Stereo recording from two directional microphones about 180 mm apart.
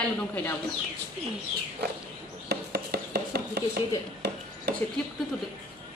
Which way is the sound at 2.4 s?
60° right (ahead or behind).